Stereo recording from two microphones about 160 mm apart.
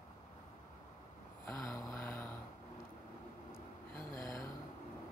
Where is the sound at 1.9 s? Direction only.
15° left (ahead or behind).